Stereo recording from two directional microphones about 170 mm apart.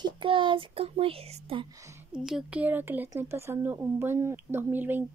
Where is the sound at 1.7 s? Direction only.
15° right (ahead or behind).